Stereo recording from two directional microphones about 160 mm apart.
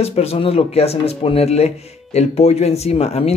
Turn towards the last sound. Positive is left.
turn(degrees=40)  # may be behind; listen again after turning